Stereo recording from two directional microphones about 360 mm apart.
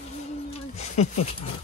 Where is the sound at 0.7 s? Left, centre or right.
Centre.